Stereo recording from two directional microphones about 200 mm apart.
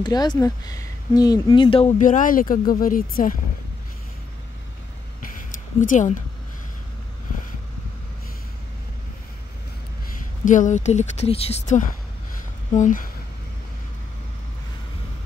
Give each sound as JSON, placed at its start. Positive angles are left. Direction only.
{"t": 0.0, "sound": "speech", "side_deg": 20}
{"t": 5.5, "sound": "speech", "side_deg": 40}
{"t": 10.4, "sound": "speech", "side_deg": 40}